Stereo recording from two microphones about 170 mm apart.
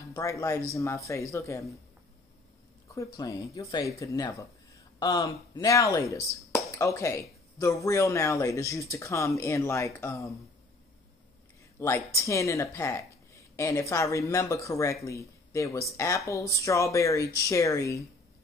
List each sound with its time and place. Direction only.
0.1 s speech: 20° left (ahead or behind)
2.9 s speech: 20° left (ahead or behind)
11.8 s speech: 15° left (ahead or behind)